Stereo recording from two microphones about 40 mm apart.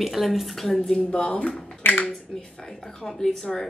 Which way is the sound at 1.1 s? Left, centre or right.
Left.